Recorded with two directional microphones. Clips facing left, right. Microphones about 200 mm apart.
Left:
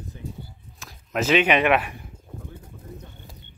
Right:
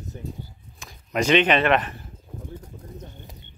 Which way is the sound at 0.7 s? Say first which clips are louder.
Right 1 dB; centre (ahead or behind).